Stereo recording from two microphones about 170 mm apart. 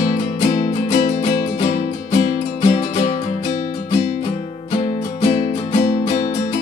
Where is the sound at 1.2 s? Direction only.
35° left (ahead or behind).